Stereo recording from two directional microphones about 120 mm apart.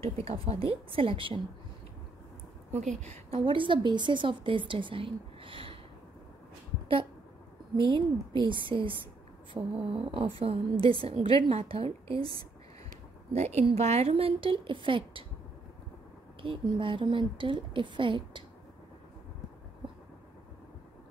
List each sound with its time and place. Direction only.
0.0 s a woman's voice: 55° right (ahead or behind)
2.7 s a woman's voice: 75° right (ahead or behind)
3.3 s a woman's voice: 45° right (ahead or behind)
7.7 s a woman's voice: 45° right (ahead or behind)
9.6 s a sound: 15° right (ahead or behind)
9.9 s a woman's voice: 50° right (ahead or behind)
13.3 s a woman's voice: 65° right (ahead or behind); by 15.2 s 45° right (ahead or behind)
16.3 s a woman's voice: 45° right (ahead or behind)